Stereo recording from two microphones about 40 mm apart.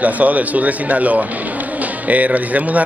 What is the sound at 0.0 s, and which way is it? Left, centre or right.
A man's voice, right.